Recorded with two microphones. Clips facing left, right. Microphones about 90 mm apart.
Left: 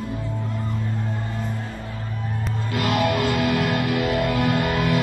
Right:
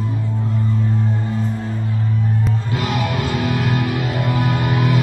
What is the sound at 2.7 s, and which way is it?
Music, 55° left (ahead or behind).